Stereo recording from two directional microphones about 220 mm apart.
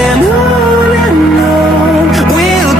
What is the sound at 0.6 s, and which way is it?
Music, 20° right (ahead or behind).